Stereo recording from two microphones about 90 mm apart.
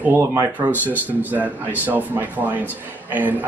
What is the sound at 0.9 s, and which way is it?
A man's voice, 20° right (ahead or behind).